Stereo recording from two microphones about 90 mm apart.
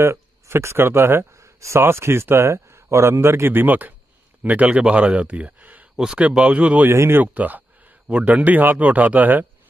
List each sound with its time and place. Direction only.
0.0 s speech: 30° right (ahead or behind)
6.9 s speech: 30° right (ahead or behind)